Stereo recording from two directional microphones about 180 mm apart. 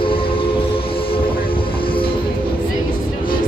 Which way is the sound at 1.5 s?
30° left (ahead or behind).